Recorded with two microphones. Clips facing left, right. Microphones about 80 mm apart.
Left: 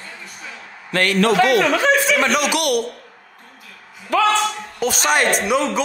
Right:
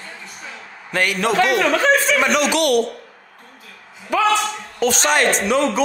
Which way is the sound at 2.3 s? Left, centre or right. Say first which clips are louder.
Right 2 dB; centre.